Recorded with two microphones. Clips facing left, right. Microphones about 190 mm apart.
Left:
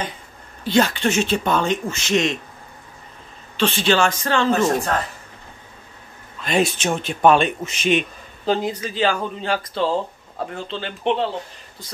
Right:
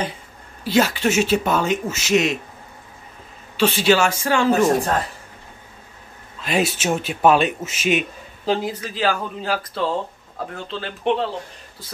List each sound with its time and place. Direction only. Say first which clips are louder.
0.7 s speech: even; 5° right (ahead or behind)
3.5 s speech: right 2 dB; 10° right (ahead or behind)
6.4 s speech: left 1 dB; 5° right (ahead or behind)